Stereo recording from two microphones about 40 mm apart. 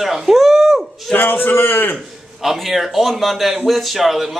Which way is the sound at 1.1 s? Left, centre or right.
Left.